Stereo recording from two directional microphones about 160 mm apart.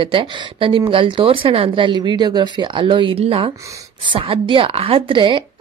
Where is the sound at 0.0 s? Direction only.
35° right (ahead or behind).